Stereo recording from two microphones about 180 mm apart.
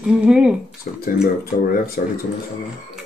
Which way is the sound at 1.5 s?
55° left (ahead or behind).